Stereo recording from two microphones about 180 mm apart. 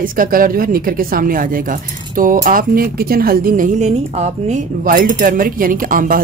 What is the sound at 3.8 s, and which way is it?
Speech, 40° right (ahead or behind).